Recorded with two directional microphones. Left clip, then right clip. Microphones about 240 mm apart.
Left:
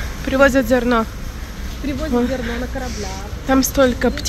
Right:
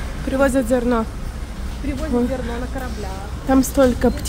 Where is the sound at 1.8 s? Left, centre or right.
Left.